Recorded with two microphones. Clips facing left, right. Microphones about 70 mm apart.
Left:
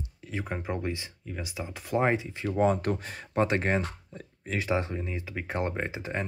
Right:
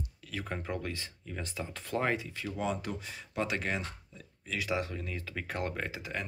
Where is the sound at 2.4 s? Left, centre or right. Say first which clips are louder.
Left 12 dB; left.